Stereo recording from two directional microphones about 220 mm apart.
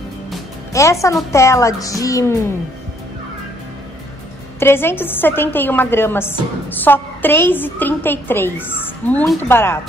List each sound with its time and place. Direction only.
0.7 s a woman's voice: 15° left (ahead or behind)
4.6 s a woman's voice: 10° left (ahead or behind)